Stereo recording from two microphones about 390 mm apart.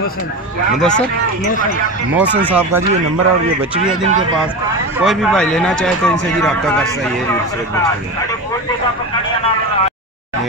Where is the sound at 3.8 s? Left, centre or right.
Right.